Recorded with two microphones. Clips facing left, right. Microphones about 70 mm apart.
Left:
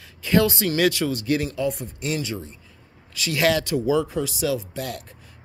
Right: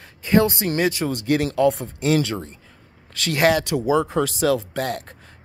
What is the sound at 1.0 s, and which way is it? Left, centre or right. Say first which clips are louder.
Speech: right 2 dB; right.